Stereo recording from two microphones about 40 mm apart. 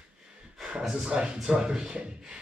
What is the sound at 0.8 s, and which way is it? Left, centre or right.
Speech, centre.